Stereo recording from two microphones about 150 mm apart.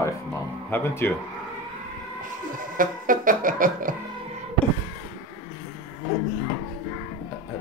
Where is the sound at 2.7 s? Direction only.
65° right (ahead or behind).